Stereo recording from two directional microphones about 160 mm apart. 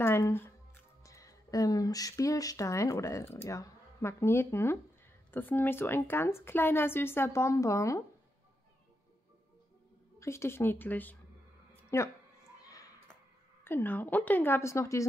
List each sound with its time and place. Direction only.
0.0 s speech: 15° left (ahead or behind)
10.1 s speech: 15° left (ahead or behind)
11.7 s a sound: 15° left (ahead or behind)
13.7 s speech: 10° left (ahead or behind)